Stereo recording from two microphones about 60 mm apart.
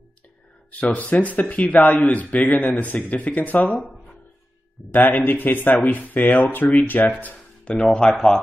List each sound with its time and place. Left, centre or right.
0.7 s speech: left
4.9 s speech: left
7.7 s speech: centre